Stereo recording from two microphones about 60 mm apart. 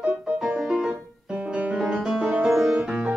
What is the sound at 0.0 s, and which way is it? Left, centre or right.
Music, centre.